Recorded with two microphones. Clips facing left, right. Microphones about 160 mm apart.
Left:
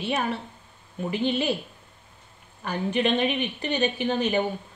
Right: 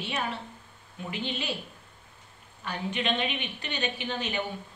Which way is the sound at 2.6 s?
50° left (ahead or behind).